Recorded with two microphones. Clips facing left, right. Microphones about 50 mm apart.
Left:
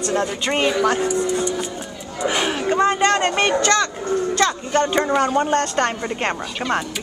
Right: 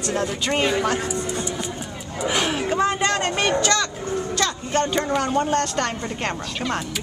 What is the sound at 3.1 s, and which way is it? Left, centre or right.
Speech, centre.